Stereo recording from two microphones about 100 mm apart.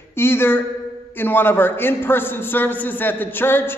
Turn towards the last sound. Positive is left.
turn(degrees=20)  # may be behind; listen again after turning